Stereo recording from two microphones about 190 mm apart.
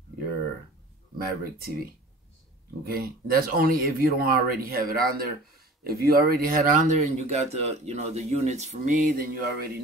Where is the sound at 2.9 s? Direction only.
50° right (ahead or behind).